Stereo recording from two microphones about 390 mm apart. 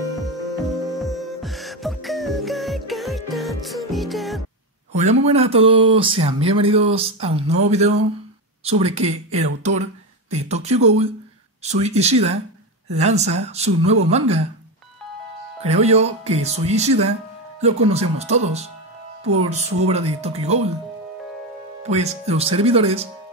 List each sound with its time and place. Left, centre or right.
0.9 s music: centre
4.9 s speech: centre
15.6 s speech: centre
21.8 s speech: centre